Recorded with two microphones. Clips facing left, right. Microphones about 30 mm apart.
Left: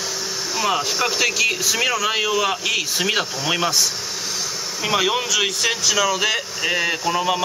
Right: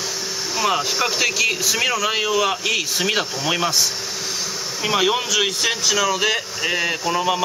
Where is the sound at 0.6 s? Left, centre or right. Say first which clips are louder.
Right 1 dB; centre.